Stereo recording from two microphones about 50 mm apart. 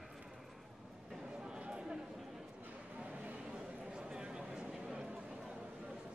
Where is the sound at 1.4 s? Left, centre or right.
Centre.